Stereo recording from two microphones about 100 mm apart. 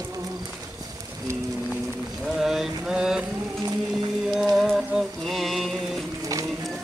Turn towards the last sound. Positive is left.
turn(degrees=0)  # may be behind; listen again after turning